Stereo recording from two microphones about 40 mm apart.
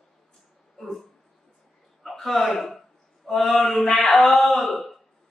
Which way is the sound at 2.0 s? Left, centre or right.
Centre.